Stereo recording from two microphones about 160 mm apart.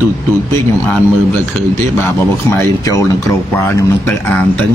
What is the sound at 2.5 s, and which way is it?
A man's voice, 20° left (ahead or behind).